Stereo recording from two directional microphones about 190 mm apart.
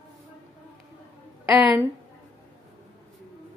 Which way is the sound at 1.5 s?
5° right (ahead or behind).